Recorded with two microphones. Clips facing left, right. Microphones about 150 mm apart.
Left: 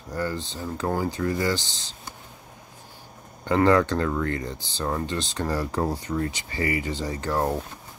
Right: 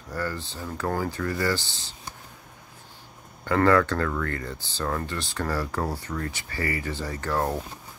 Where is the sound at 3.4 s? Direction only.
20° left (ahead or behind).